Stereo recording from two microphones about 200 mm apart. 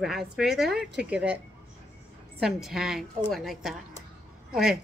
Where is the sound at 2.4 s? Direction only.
Centre (ahead or behind).